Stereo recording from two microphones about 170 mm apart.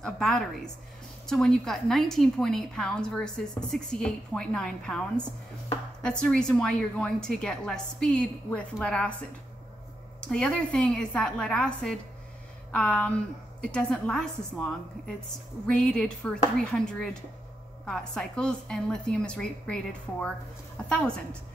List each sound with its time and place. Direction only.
0.0 s a woman's voice: 5° left (ahead or behind)
10.2 s a woman's voice: 5° left (ahead or behind)